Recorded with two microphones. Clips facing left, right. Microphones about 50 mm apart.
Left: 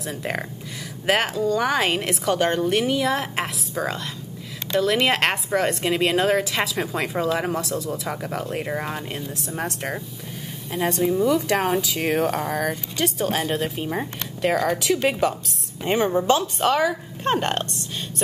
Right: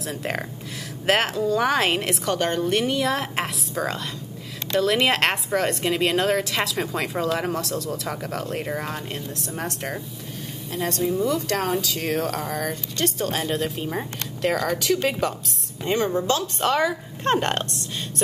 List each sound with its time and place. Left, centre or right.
0.0 s speech: centre
16.5 s speech: centre